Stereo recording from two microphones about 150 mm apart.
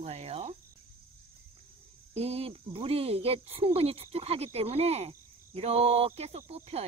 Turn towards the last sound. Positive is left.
turn(degrees=-45)  # may be behind; listen again after turning